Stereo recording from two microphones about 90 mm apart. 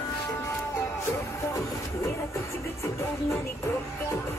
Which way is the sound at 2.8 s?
30° left (ahead or behind).